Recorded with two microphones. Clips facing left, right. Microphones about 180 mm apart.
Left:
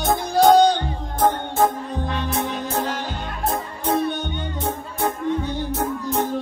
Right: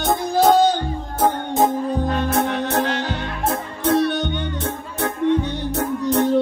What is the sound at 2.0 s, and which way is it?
Music, 50° right (ahead or behind).